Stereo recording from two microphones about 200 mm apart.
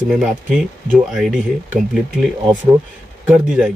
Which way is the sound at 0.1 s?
5° right (ahead or behind).